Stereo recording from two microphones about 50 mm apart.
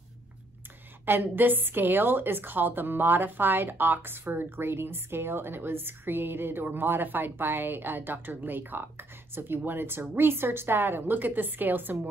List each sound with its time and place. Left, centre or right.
1.0 s a woman's voice: right